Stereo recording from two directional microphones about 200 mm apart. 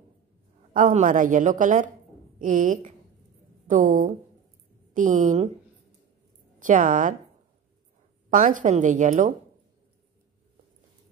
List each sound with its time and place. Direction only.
0.7 s a woman's voice: 40° right (ahead or behind)
6.6 s a woman's voice: 40° right (ahead or behind)
8.3 s a woman's voice: 40° right (ahead or behind)